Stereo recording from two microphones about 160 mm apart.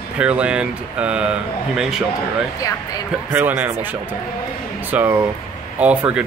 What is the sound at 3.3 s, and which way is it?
Speech, 10° right (ahead or behind).